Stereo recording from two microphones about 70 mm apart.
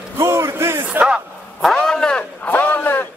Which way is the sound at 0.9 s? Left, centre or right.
Centre.